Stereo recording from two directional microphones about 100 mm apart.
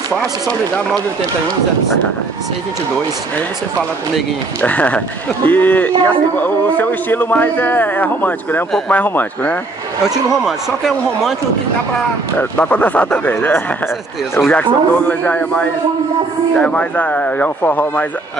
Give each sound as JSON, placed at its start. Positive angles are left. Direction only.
{"t": 0.1, "sound": "a man's voice", "side_deg": 10}
{"t": 4.6, "sound": "a man's voice", "side_deg": 15}
{"t": 10.0, "sound": "speech", "side_deg": -5}
{"t": 12.4, "sound": "a man's voice", "side_deg": 20}